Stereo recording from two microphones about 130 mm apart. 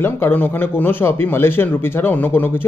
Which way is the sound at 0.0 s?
15° left (ahead or behind).